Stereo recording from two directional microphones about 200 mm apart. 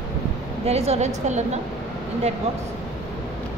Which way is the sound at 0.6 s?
30° right (ahead or behind).